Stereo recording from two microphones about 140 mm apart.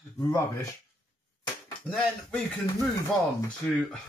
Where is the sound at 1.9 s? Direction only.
10° left (ahead or behind).